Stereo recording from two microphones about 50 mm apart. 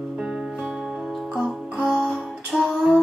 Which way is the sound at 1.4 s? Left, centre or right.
Centre.